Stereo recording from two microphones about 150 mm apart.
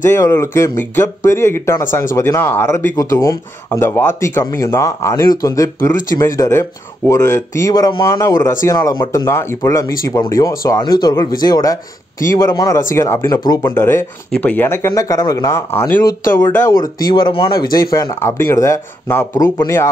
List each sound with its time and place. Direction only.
0.0 s speech: 20° left (ahead or behind)